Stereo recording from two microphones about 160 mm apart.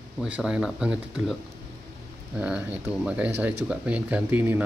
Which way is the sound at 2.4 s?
5° right (ahead or behind).